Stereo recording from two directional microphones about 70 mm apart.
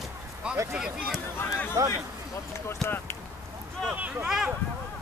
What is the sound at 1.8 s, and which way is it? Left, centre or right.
Speech, right.